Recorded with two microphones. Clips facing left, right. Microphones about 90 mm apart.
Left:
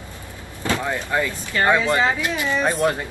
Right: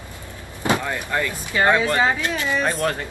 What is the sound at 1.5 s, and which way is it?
Speech, 10° right (ahead or behind).